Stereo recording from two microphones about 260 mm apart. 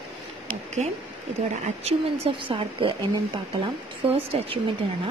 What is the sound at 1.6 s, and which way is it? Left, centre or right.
Speech, right.